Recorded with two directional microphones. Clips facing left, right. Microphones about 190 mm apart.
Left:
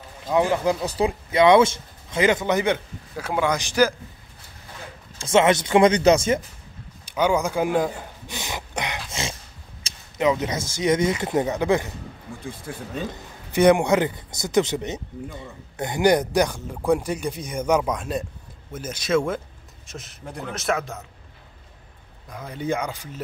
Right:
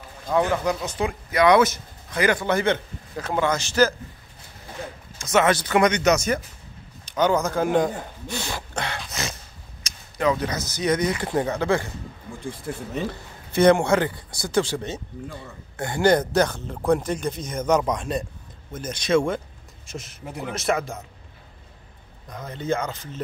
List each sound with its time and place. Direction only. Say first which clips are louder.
0.3 s a man's voice: left 1 dB; 20° left (ahead or behind)
0.8 s speech: left 3 dB; 35° left (ahead or behind); by 3.9 s 15° left (ahead or behind)
5.2 s speech: left 2 dB; 25° left (ahead or behind)
7.1 s a man's voice: even; 10° left (ahead or behind)
8.3 s a sound: right 2 dB; 15° left (ahead or behind)
9.8 s a man's voice: left 1 dB; 20° left (ahead or behind); by 21.0 s centre (ahead or behind)
22.3 s a man's voice: even; 10° left (ahead or behind)